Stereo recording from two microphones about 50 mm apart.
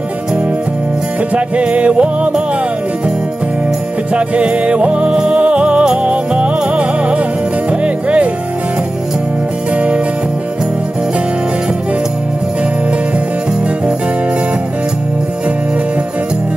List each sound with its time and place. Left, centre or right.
1.3 s music: right
4.1 s music: right
9.8 s music: right